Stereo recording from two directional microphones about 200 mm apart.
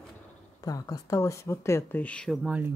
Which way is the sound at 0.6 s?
20° left (ahead or behind).